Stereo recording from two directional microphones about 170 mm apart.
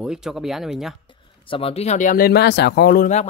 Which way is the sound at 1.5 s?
35° left (ahead or behind).